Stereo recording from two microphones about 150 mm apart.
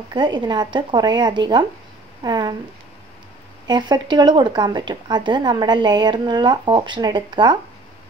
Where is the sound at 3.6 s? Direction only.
30° right (ahead or behind).